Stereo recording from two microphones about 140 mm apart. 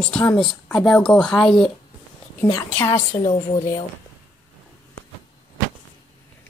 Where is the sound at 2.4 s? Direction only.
25° left (ahead or behind).